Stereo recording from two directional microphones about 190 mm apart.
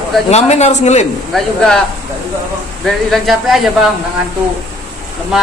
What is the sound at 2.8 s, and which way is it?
Speech, centre (ahead or behind).